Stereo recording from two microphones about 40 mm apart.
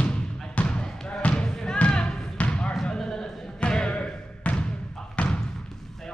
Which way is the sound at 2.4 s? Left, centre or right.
Left.